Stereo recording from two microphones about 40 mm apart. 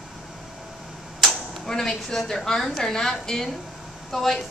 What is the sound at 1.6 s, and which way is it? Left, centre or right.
A woman's voice, centre.